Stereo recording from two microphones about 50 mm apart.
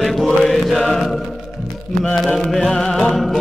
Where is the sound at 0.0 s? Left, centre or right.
Centre.